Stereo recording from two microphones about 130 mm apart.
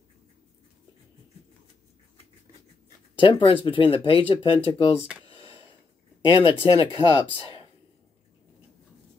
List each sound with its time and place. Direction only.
3.2 s speech: 40° left (ahead or behind)
5.2 s a sound: 45° left (ahead or behind)
6.2 s speech: 40° left (ahead or behind)